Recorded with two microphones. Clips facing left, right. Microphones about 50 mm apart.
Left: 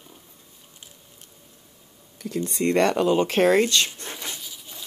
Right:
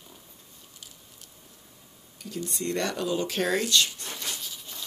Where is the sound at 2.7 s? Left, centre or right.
Left.